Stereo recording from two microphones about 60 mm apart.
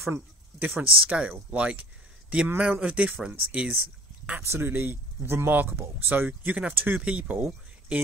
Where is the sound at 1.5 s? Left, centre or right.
Right.